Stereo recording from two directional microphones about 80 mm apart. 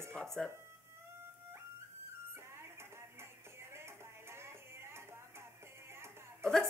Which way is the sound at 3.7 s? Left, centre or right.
Right.